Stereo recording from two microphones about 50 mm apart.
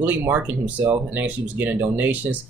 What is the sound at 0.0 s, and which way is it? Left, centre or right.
Speech, right.